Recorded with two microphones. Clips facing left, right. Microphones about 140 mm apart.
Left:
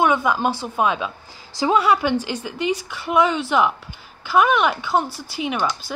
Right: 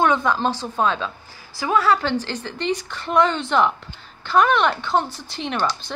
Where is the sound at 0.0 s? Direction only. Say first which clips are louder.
Left 1 dB; 10° left (ahead or behind).